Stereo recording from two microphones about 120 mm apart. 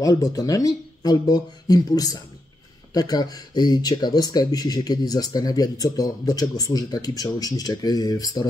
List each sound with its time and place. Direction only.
0.0 s speech: 30° left (ahead or behind)